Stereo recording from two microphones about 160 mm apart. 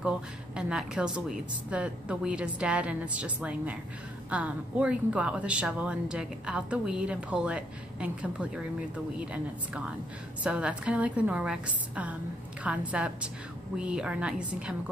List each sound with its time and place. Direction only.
0.6 s a woman's voice: 5° right (ahead or behind)